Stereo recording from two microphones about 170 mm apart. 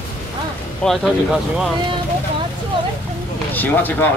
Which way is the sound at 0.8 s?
Centre (ahead or behind).